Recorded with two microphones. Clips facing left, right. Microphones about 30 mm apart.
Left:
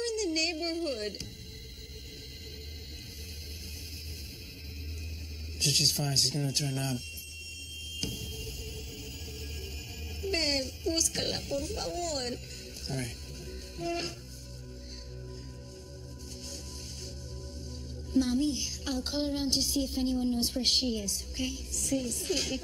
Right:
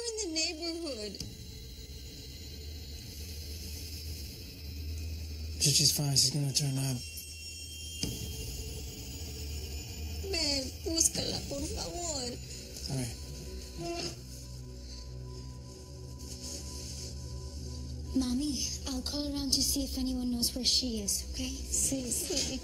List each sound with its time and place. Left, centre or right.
0.0 s a sound: left
5.6 s speech: centre
8.0 s a sound: centre
10.2 s speech: left
12.8 s music: left
18.1 s speech: left
18.6 s music: left
19.0 s speech: left